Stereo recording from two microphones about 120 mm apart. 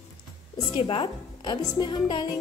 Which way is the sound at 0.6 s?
45° left (ahead or behind).